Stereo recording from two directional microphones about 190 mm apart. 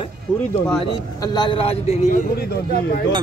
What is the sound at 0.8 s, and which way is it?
A man's voice, 25° left (ahead or behind).